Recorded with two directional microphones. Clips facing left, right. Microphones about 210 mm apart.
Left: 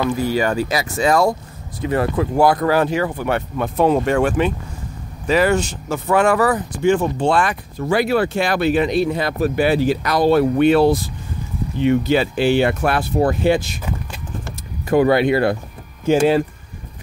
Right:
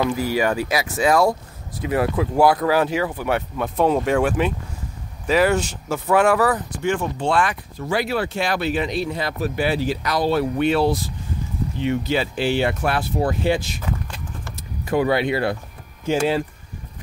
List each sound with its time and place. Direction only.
0.3 s speech: 5° right (ahead or behind)
6.8 s speech: 35° left (ahead or behind); by 13.7 s 50° left (ahead or behind)
14.9 s speech: 50° left (ahead or behind)